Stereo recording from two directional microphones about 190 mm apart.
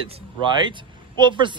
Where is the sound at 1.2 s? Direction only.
25° right (ahead or behind).